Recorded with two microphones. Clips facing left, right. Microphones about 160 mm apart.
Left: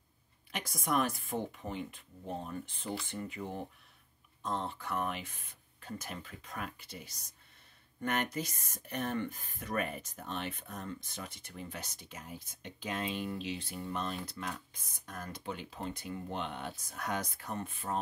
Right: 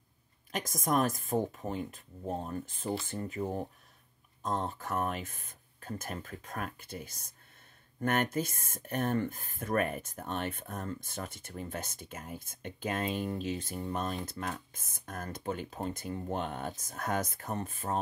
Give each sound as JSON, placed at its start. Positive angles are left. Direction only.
{"t": 0.5, "sound": "speech", "side_deg": -45}